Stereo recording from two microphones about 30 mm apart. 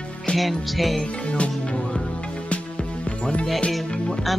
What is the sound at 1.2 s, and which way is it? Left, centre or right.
Music, left.